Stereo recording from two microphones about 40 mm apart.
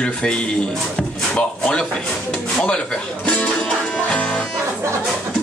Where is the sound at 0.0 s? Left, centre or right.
Left.